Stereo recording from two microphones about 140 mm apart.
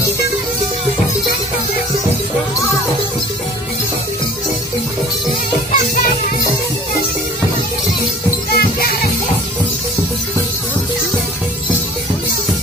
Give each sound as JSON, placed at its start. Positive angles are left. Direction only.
{"t": 8.5, "sound": "music", "side_deg": 90}